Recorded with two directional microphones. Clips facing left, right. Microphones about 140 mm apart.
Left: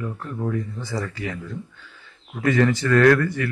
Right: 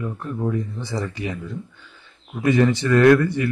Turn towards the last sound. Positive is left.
turn(degrees=-20)  # may be behind; listen again after turning